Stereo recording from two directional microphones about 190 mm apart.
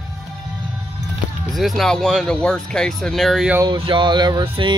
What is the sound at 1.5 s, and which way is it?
Speech, centre (ahead or behind).